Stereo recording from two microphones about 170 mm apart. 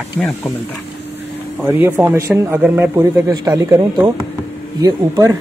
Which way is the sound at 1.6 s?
10° right (ahead or behind).